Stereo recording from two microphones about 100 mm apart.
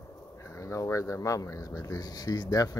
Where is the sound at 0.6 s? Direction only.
30° left (ahead or behind).